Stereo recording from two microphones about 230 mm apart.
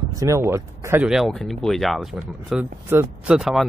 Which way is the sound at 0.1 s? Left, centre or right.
Centre.